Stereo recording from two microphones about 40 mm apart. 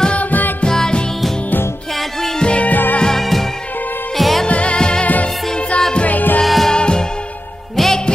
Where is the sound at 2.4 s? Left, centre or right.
Left.